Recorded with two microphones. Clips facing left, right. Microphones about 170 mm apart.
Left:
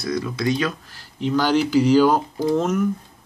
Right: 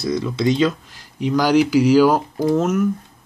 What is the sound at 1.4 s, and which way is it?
Speech, 10° right (ahead or behind).